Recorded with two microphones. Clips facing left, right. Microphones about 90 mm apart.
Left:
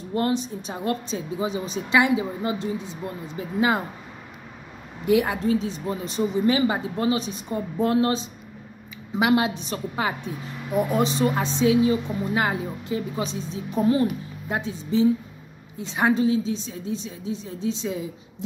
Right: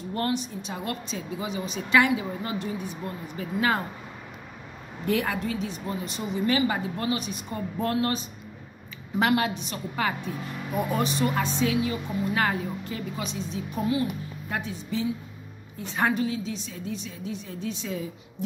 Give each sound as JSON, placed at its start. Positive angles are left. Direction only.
{"t": 0.1, "sound": "a woman's voice", "side_deg": 25}
{"t": 5.0, "sound": "a woman's voice", "side_deg": 15}
{"t": 5.4, "sound": "a woman's voice", "side_deg": 30}
{"t": 9.5, "sound": "a woman's voice", "side_deg": 35}
{"t": 10.0, "sound": "a woman's voice", "side_deg": 20}
{"t": 13.3, "sound": "a woman's voice", "side_deg": 35}